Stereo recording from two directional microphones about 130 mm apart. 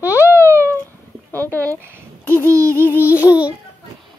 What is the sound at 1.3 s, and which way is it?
Speech, 15° left (ahead or behind).